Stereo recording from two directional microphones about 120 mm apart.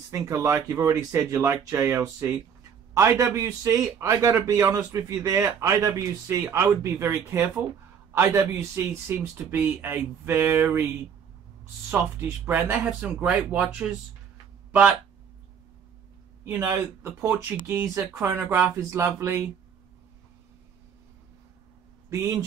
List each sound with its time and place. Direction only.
0.1 s a man's voice: 25° right (ahead or behind)
11.9 s speech: 20° right (ahead or behind)
16.4 s a man's voice: 15° right (ahead or behind)
22.1 s a man's voice: 25° right (ahead or behind)